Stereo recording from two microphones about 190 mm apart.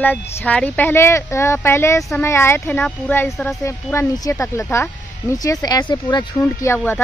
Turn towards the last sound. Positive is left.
turn(degrees=10)  # may be behind; listen again after turning